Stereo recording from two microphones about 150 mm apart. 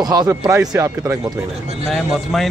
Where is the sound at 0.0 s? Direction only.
25° right (ahead or behind).